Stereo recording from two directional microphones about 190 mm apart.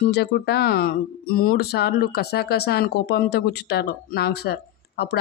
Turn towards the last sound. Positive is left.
turn(degrees=60)  # may be behind; listen again after turning